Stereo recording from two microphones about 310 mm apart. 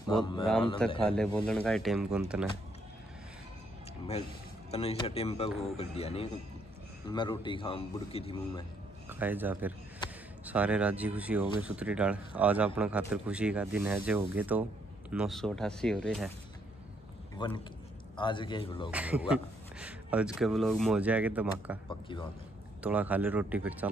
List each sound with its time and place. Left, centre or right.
0.2 s a man's voice: centre
1.0 s speech: centre
4.6 s a man's voice: centre
9.1 s speech: centre
17.4 s a man's voice: centre
18.9 s speech: centre
21.8 s a man's voice: centre
22.8 s speech: centre